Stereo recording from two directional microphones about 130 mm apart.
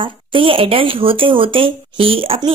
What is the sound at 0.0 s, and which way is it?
Speech, 40° right (ahead or behind).